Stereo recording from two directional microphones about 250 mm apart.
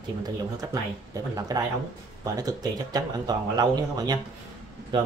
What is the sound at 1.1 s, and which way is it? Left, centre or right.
Speech, centre.